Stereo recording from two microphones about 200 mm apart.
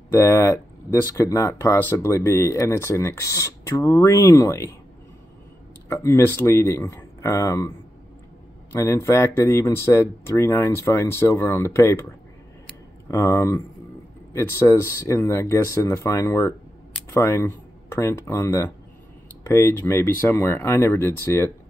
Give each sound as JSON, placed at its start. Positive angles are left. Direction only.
{"t": 0.1, "sound": "speech", "side_deg": 15}
{"t": 5.9, "sound": "speech", "side_deg": 15}
{"t": 8.7, "sound": "speech", "side_deg": 15}
{"t": 13.1, "sound": "speech", "side_deg": 15}